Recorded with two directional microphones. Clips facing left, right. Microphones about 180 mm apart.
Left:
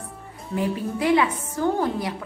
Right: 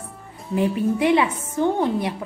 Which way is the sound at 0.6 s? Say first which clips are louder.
Right 5 dB; 20° right (ahead or behind).